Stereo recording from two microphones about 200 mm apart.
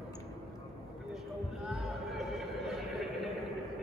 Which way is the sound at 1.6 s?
Centre (ahead or behind).